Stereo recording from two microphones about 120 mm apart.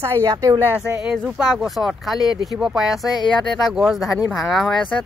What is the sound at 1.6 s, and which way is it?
Speech, centre (ahead or behind).